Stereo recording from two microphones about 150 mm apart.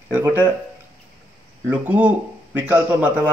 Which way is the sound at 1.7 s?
10° right (ahead or behind).